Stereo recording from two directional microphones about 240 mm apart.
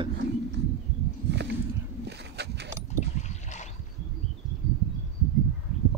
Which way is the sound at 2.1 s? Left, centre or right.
Right.